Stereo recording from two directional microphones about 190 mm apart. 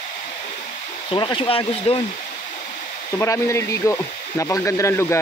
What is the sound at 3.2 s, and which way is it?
Speech, 15° left (ahead or behind).